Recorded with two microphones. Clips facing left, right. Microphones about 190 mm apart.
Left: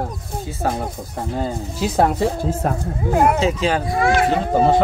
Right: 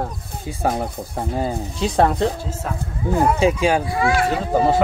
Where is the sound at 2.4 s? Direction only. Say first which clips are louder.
Left 6 dB; 55° left (ahead or behind).